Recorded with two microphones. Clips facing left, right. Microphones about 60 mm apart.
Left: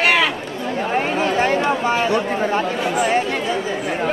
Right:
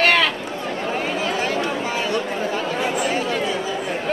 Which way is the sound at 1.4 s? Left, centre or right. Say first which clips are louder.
Left 5 dB; left.